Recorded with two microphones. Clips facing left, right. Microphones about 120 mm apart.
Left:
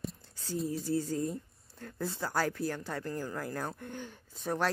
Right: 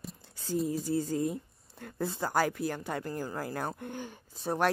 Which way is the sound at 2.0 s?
20° right (ahead or behind).